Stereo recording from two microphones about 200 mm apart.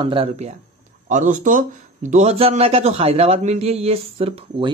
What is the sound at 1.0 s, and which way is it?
Speech, 40° right (ahead or behind).